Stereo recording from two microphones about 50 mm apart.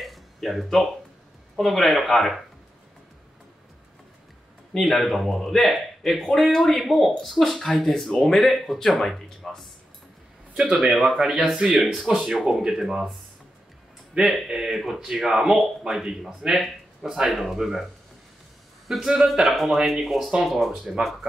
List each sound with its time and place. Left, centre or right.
0.0 s a sound: centre
1.6 s speech: centre
4.7 s speech: centre
10.8 s speech: centre
12.0 s speech: centre
12.3 s speech: centre
14.2 s speech: centre
18.9 s speech: centre